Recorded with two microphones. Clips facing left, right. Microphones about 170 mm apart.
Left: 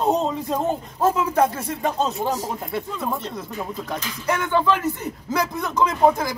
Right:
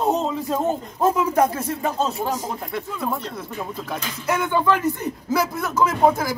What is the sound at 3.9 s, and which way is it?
A man's voice, 10° right (ahead or behind).